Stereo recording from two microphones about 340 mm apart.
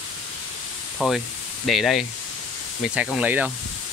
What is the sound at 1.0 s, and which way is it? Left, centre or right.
Speech, centre.